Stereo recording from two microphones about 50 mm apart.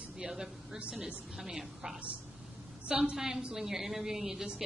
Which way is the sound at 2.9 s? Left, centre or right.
Right.